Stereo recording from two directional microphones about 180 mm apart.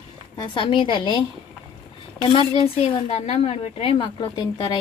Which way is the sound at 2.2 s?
25° left (ahead or behind).